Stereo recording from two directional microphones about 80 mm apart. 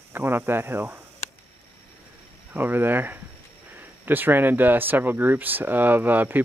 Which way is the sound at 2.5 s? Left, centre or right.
Right.